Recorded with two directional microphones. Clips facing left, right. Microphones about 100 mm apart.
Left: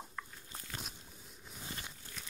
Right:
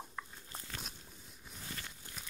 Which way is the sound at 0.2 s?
10° right (ahead or behind).